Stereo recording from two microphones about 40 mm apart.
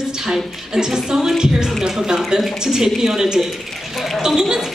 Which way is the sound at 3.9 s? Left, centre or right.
Centre.